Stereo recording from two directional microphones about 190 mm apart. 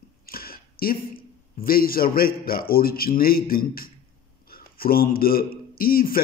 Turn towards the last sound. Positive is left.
turn(degrees=50)  # may be behind; listen again after turning